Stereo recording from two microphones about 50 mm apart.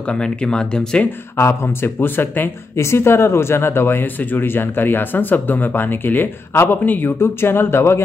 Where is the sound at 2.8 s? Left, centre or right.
Left.